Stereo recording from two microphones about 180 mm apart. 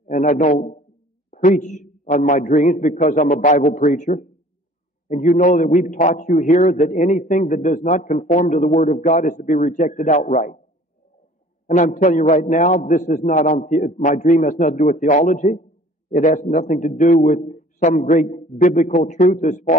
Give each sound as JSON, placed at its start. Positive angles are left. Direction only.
{"t": 0.1, "sound": "a man's voice", "side_deg": 45}
{"t": 11.6, "sound": "a man's voice", "side_deg": 45}